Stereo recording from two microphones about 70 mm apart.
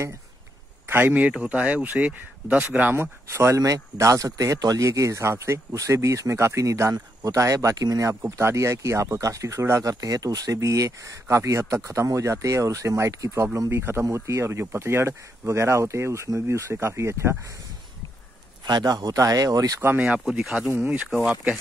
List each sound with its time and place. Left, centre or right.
0.8 s speech: right
1.4 s speech: right
3.5 s speech: right
8.1 s speech: right
9.8 s speech: right
18.7 s speech: right
20.2 s speech: centre
20.5 s speech: centre
20.8 s speech: right
21.2 s speech: centre